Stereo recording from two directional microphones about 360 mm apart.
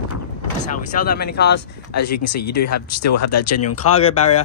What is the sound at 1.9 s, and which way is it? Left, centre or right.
Speech, left.